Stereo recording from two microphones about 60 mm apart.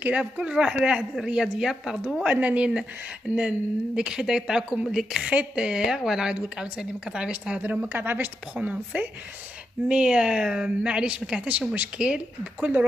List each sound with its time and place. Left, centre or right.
0.0 s speech: right
2.2 s speech: right
5.2 s speech: right
7.9 s speech: right; by 12.7 s centre